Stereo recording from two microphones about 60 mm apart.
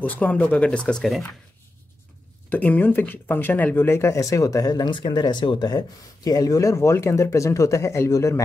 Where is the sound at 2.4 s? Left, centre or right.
Left.